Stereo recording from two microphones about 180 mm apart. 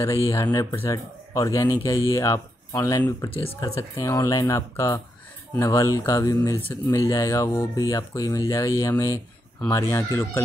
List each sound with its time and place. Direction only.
0.0 s speech: 15° left (ahead or behind)